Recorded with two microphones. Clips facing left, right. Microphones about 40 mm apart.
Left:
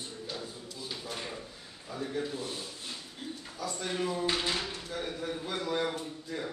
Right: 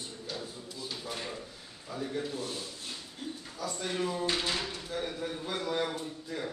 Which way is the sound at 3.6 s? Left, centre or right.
Centre.